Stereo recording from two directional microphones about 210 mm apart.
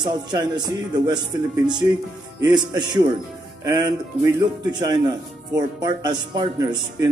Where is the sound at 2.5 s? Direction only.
20° right (ahead or behind).